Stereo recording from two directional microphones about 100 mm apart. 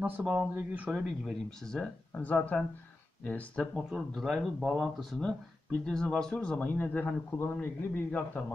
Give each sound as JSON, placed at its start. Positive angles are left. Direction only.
{"t": 0.0, "sound": "speech", "side_deg": -15}
{"t": 1.6, "sound": "speech", "side_deg": 10}
{"t": 3.7, "sound": "a man's voice", "side_deg": 0}